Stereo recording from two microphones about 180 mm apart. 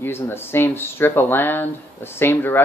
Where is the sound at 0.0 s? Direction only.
10° left (ahead or behind).